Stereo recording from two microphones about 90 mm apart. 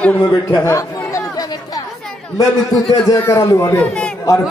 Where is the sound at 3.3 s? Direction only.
35° left (ahead or behind).